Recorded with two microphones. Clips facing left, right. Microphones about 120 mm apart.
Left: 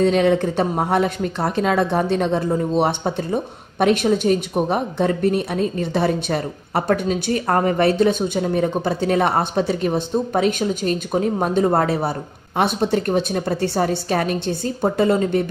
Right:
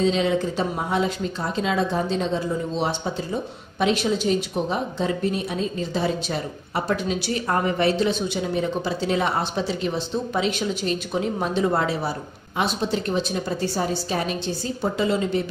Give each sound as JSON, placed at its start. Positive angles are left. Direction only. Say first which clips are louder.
{"t": 0.0, "sound": "speech", "louder": "left 5 dB", "side_deg": 60}